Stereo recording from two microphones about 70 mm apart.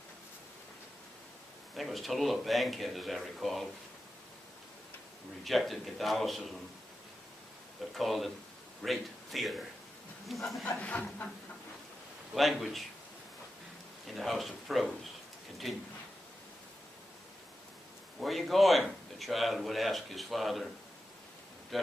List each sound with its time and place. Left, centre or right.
1.8 s a man's voice: centre
5.4 s a man's voice: centre
7.9 s a man's voice: centre
10.8 s speech: left
12.4 s a man's voice: centre
14.0 s a man's voice: centre
18.2 s a man's voice: centre